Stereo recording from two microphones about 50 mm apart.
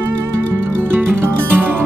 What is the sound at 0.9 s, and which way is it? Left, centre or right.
Music, right.